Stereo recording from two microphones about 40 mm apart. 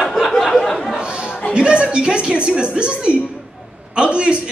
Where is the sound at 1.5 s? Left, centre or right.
Right.